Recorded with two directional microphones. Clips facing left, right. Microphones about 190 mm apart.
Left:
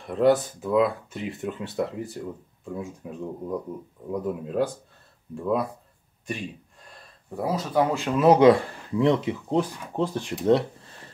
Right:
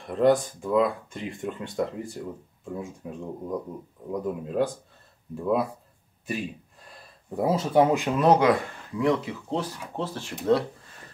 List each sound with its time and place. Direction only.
0.0 s speech: centre (ahead or behind)
6.2 s gasp: 5° right (ahead or behind)
7.3 s speech: 25° right (ahead or behind)
8.4 s speech: 30° left (ahead or behind)